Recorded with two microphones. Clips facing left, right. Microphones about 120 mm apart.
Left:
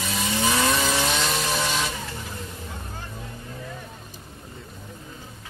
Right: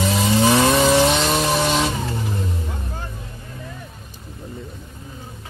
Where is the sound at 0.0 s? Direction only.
35° right (ahead or behind).